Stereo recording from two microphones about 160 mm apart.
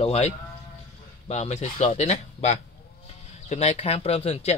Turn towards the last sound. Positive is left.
turn(degrees=40)  # may be behind; listen again after turning